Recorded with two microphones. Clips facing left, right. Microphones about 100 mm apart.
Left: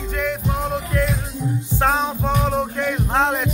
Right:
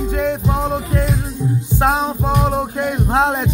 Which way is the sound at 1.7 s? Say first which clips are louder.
Right 2 dB; 10° right (ahead or behind).